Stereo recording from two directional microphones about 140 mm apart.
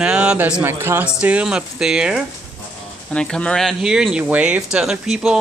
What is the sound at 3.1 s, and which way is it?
Speech, 5° left (ahead or behind).